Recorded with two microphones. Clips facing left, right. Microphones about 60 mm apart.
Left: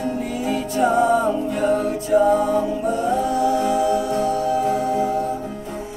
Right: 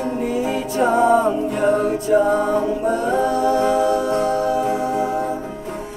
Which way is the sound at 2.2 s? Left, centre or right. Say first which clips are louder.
Even; right.